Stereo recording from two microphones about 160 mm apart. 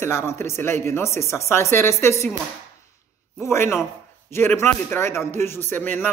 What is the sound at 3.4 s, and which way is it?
Speech, 15° left (ahead or behind).